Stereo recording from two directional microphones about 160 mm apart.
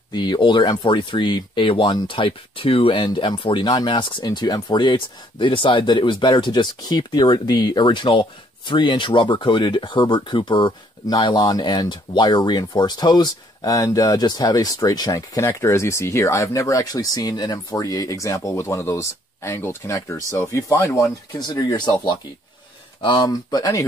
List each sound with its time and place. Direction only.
0.1 s speech: 30° left (ahead or behind)
23.0 s speech: 25° left (ahead or behind)